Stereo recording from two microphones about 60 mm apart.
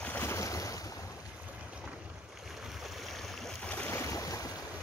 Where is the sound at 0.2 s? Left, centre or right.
Left.